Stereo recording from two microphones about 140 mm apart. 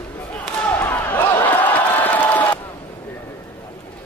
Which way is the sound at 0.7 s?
15° left (ahead or behind).